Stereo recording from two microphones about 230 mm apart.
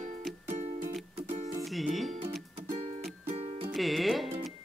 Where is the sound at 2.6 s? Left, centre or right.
Right.